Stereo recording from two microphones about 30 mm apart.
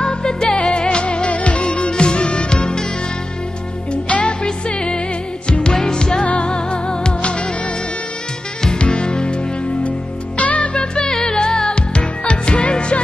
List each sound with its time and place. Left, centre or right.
0.0 s music: left
0.8 s music: left
3.9 s music: left
7.2 s music: left
8.6 s music: left
9.8 s music: left
11.2 s music: left